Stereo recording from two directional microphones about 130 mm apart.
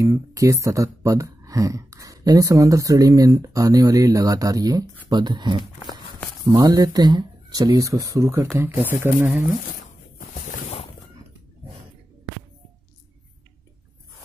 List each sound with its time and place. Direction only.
0.0 s speech: 25° right (ahead or behind)